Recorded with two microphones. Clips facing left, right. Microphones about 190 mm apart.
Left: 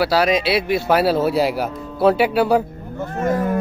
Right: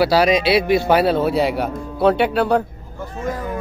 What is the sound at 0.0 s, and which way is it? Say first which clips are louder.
Speech: right 2 dB; centre (ahead or behind).